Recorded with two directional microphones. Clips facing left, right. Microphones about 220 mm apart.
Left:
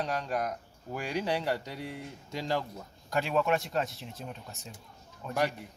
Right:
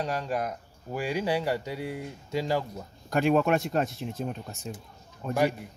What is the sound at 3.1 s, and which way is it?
Speech, 50° right (ahead or behind).